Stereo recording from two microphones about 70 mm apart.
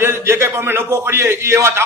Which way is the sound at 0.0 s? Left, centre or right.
Right.